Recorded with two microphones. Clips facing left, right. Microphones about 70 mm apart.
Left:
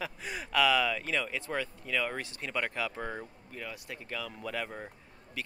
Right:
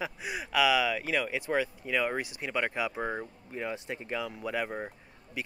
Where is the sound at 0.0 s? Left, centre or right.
Centre.